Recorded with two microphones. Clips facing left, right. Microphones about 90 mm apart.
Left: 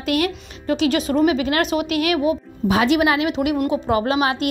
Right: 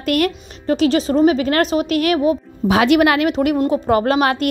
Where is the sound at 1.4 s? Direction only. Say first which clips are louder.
Right 3 dB; 40° right (ahead or behind).